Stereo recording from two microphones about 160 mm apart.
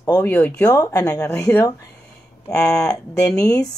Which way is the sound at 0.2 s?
10° left (ahead or behind).